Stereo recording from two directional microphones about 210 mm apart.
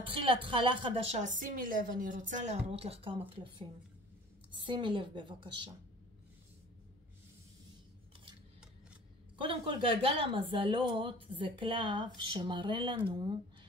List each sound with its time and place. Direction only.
0.0 s a woman's voice: 25° right (ahead or behind)
9.4 s a woman's voice: 25° right (ahead or behind)